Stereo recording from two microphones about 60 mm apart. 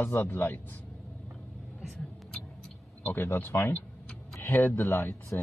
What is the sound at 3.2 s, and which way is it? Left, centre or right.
Speech, left.